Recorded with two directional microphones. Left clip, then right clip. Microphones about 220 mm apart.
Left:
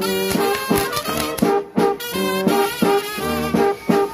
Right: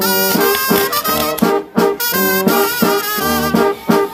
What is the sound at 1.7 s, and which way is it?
Music, 30° right (ahead or behind).